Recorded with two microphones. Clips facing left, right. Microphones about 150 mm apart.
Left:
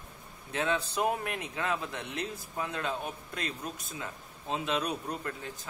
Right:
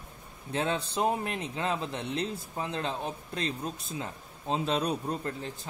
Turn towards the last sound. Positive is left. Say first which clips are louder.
# right 3 dB
turn(degrees=-30)  # may be behind; listen again after turning